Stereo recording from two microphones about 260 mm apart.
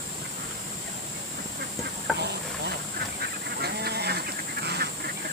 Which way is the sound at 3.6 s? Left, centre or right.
Right.